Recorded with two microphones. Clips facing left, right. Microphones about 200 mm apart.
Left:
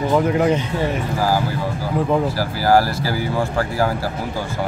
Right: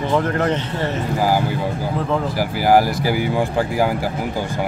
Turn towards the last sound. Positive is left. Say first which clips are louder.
# right 2 dB
turn(degrees=-15)  # may be behind; listen again after turning